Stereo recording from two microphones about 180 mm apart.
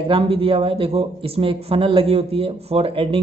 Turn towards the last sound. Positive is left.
turn(degrees=-30)  # may be behind; listen again after turning